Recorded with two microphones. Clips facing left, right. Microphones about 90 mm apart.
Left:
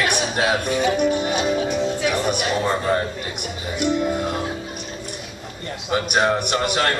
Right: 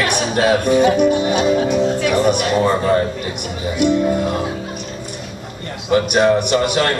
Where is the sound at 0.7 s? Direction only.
45° right (ahead or behind).